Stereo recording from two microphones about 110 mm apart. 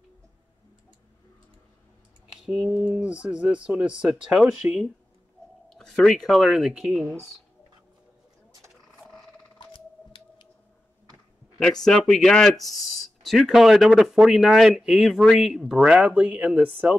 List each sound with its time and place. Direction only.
2.3 s speech: 5° right (ahead or behind)
5.8 s speech: 5° left (ahead or behind)
9.0 s a sound: 15° right (ahead or behind)
11.6 s speech: 5° left (ahead or behind); by 16.9 s 10° right (ahead or behind)